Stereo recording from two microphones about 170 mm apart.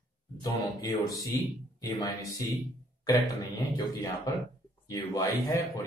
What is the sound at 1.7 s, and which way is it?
Speech, 20° left (ahead or behind).